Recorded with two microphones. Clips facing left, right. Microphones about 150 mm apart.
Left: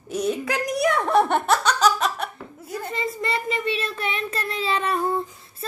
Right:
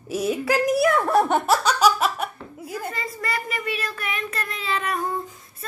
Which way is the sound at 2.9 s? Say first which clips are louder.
Left 3 dB; 25° left (ahead or behind).